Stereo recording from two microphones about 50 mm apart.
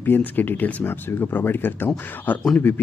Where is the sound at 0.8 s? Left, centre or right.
Left.